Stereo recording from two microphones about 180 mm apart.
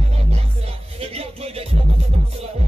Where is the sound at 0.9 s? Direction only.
35° right (ahead or behind).